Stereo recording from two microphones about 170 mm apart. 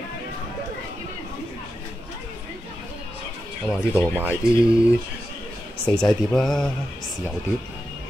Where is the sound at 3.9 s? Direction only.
10° left (ahead or behind).